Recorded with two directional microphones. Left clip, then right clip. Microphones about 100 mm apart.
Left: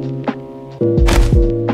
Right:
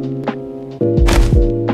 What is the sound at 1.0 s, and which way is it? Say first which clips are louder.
Music: even; 5° right (ahead or behind).